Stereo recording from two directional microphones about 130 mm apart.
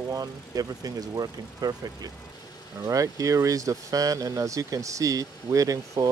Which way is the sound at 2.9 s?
25° right (ahead or behind).